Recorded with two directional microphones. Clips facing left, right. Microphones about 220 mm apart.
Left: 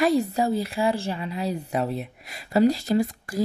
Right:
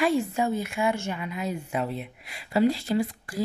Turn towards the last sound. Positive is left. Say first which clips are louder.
# left 3 dB
turn(degrees=40)  # may be behind; listen again after turning